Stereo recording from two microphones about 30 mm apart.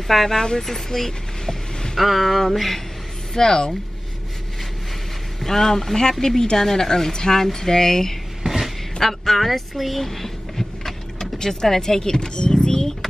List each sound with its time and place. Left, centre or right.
0.3 s a woman's voice: centre
0.7 s vehicle: centre
2.0 s speech: centre
3.3 s a woman's voice: left
5.4 s a woman's voice: centre
8.5 s a sound: centre
9.0 s speech: centre; by 12.8 s left